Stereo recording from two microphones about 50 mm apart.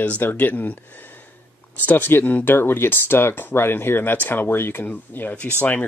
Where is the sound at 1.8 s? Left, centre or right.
Left.